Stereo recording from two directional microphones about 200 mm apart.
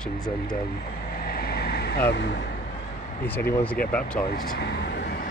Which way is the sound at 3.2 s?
10° left (ahead or behind).